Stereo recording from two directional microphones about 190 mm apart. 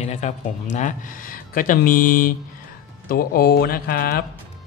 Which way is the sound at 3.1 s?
50° left (ahead or behind).